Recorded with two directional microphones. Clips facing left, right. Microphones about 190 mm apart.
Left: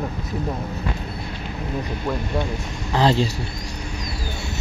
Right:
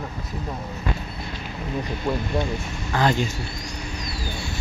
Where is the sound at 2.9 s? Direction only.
30° left (ahead or behind).